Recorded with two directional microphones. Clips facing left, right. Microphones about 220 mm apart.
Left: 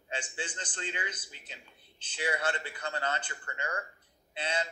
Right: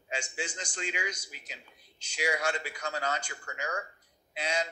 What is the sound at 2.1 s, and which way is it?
A man's voice, 10° right (ahead or behind).